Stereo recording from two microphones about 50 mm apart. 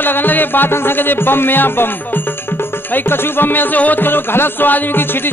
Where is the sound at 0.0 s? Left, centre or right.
Left.